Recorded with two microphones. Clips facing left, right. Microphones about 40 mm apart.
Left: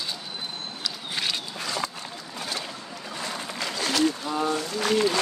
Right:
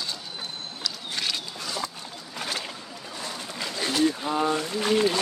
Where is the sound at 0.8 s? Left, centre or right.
Centre.